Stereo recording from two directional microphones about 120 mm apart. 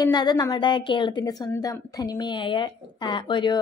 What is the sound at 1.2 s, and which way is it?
A woman's voice, 30° left (ahead or behind).